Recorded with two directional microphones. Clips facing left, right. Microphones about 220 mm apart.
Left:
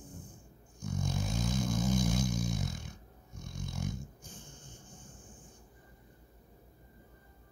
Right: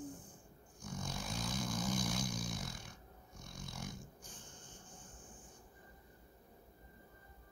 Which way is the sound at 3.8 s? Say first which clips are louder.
Left 10 dB; 25° left (ahead or behind).